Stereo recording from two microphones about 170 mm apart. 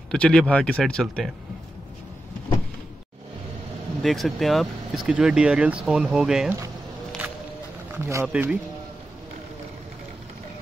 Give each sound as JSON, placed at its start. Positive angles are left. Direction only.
{"t": 0.1, "sound": "speech", "side_deg": 5}
{"t": 4.0, "sound": "speech", "side_deg": 0}
{"t": 7.9, "sound": "speech", "side_deg": -15}